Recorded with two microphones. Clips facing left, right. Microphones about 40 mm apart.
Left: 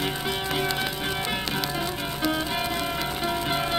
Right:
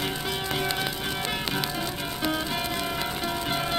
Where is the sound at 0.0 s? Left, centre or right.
Centre.